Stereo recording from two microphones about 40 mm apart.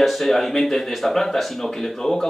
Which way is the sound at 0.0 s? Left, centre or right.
Centre.